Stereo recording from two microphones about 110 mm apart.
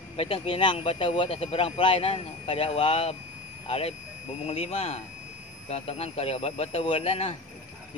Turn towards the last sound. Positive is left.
turn(degrees=70)  # may be behind; listen again after turning